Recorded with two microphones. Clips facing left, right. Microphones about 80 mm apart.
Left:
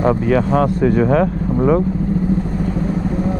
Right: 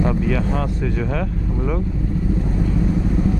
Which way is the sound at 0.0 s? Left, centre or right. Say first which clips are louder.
Left 5 dB; left.